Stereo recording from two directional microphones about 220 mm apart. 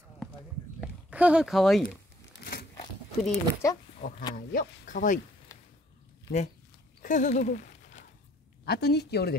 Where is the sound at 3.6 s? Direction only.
15° left (ahead or behind).